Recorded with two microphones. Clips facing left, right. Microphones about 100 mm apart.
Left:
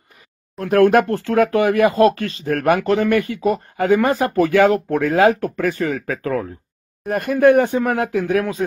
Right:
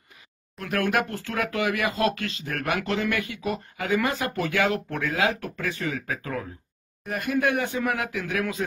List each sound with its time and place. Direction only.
0.6 s speech: 40° left (ahead or behind)
2.5 s speech: 55° left (ahead or behind)
3.1 s speech: 40° left (ahead or behind)
3.8 s speech: 50° left (ahead or behind); by 8.6 s 35° left (ahead or behind)